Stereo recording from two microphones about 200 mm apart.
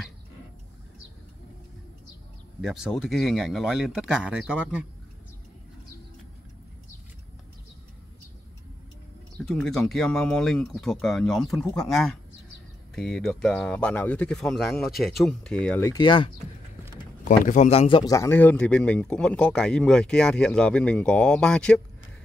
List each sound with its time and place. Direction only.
2.6 s a man's voice: centre (ahead or behind)
9.5 s a man's voice: 5° left (ahead or behind)
15.9 s speech: 25° left (ahead or behind)
17.2 s a man's voice: 40° left (ahead or behind); by 21.8 s 5° left (ahead or behind)